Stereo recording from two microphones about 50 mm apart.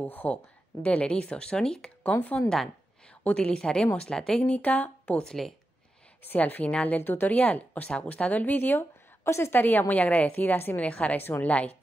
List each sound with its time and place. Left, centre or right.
0.0 s a woman's voice: left
0.8 s speech: centre
2.1 s a woman's voice: left
3.3 s speech: centre
4.4 s a woman's voice: left
5.2 s speech: centre
6.2 s a woman's voice: left
7.0 s speech: left
7.2 s a woman's voice: left
7.9 s a woman's voice: left
9.2 s a woman's voice: left
9.6 s a woman's voice: left
10.8 s speech: left
11.1 s a woman's voice: left